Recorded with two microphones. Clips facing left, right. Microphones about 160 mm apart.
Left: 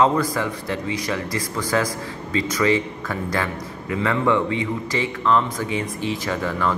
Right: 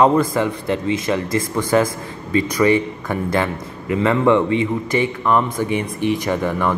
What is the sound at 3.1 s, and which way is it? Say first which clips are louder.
Speech: right 5 dB; 20° right (ahead or behind).